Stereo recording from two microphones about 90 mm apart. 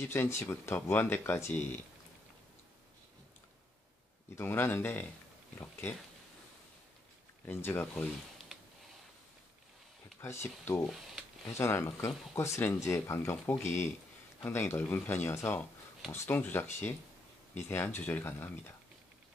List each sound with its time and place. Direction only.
0.0 s speech: 25° left (ahead or behind)
4.4 s speech: 25° left (ahead or behind)
5.6 s a sound: 25° left (ahead or behind)
7.4 s speech: 25° left (ahead or behind)
10.2 s speech: 25° left (ahead or behind)